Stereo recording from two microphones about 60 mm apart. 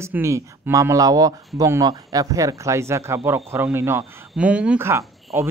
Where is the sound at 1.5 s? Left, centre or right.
Right.